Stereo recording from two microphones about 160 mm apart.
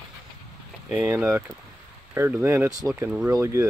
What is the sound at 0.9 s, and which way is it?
Speech, 10° right (ahead or behind).